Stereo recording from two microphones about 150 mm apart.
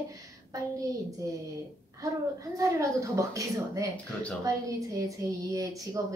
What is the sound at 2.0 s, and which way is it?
A woman's voice, 20° right (ahead or behind).